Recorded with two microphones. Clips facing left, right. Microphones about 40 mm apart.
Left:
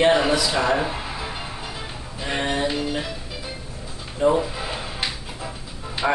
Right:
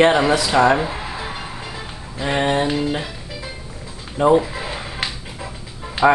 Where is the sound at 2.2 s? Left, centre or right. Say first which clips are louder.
Right 5 dB; right.